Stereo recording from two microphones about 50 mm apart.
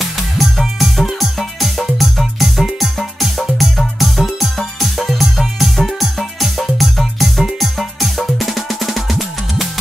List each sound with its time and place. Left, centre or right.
0.0 s music: centre